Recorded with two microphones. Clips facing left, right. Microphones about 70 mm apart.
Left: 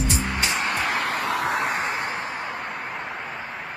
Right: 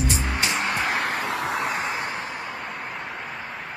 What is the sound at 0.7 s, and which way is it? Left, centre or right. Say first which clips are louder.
Vehicle: even; left.